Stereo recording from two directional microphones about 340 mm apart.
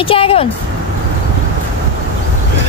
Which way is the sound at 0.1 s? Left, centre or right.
Centre.